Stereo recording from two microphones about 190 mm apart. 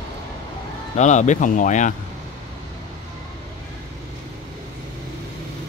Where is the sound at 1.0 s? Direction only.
40° left (ahead or behind).